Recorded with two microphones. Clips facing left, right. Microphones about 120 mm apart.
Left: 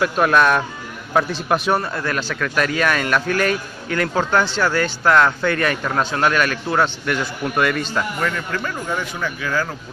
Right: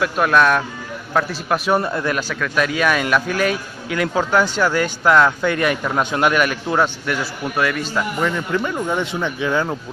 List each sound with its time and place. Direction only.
0.0 s speech: centre (ahead or behind)
1.8 s a man's voice: 15° right (ahead or behind)
8.2 s speech: 15° right (ahead or behind)